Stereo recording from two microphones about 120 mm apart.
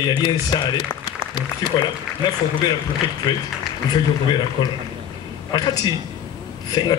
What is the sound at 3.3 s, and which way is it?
Speech, 35° left (ahead or behind).